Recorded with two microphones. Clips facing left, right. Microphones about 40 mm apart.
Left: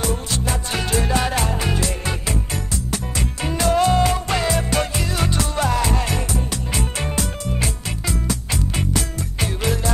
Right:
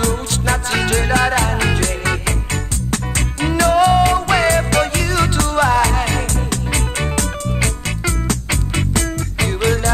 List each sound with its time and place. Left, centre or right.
0.0 s music: right
5.9 s music: right